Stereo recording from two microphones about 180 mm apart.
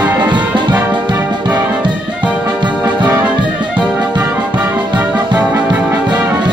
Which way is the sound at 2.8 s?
25° right (ahead or behind).